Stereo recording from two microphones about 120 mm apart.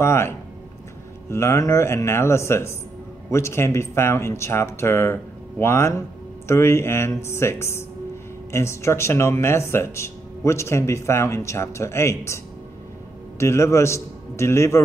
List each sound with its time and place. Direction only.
0.0 s speech: 20° left (ahead or behind)
1.3 s speech: 25° left (ahead or behind)
13.4 s a man's voice: 25° left (ahead or behind)